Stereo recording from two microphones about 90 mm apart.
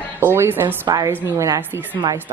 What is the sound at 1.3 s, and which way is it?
Speech, 40° right (ahead or behind).